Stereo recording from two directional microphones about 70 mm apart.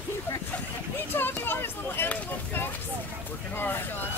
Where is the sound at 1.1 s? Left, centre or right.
Left.